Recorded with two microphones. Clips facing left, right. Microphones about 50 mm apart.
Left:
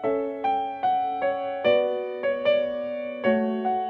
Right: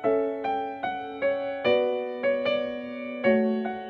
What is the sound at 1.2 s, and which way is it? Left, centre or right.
Music, left.